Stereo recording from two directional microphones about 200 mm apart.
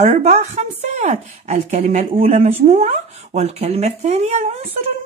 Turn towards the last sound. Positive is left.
turn(degrees=-35)  # may be behind; listen again after turning